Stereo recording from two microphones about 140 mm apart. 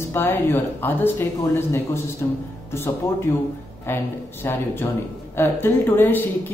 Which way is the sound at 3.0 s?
15° left (ahead or behind).